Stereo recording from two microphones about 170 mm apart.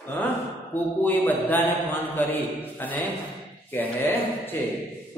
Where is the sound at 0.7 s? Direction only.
10° left (ahead or behind).